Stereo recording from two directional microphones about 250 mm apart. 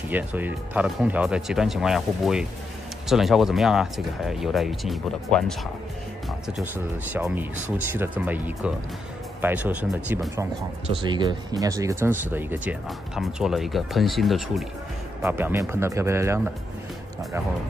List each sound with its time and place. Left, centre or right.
0.1 s speech: centre